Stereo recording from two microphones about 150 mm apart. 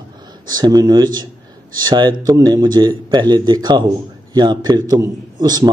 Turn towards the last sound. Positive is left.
turn(degrees=-25)  # may be behind; listen again after turning